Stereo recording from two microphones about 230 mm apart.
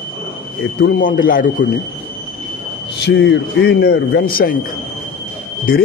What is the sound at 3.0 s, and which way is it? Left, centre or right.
A man's voice, left.